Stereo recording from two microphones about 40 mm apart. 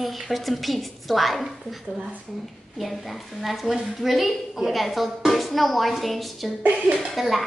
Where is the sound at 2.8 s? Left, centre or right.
Centre.